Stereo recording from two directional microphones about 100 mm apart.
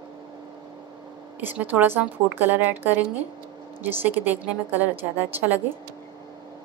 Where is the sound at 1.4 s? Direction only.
20° right (ahead or behind).